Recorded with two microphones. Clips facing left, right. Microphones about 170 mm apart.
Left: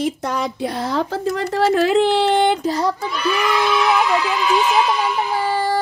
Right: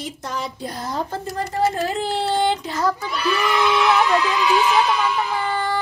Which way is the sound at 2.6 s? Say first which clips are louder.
Left 4 dB; 35° left (ahead or behind).